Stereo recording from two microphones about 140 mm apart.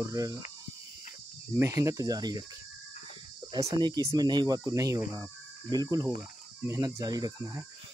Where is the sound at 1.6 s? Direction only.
20° right (ahead or behind).